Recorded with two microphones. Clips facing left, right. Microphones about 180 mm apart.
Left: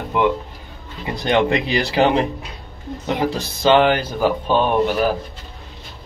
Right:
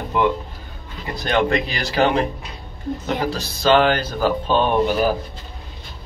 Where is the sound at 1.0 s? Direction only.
20° left (ahead or behind).